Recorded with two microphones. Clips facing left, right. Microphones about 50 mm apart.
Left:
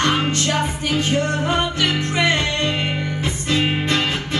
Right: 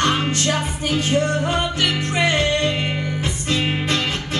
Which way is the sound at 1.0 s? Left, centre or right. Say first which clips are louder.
Right 1 dB; left.